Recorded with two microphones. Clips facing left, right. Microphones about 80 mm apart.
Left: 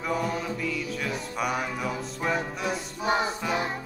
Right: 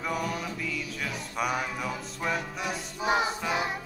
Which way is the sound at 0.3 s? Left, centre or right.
Left.